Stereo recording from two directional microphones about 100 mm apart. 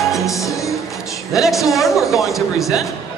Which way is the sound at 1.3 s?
Centre (ahead or behind).